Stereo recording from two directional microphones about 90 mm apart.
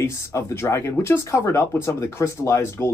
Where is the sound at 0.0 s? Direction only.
30° left (ahead or behind).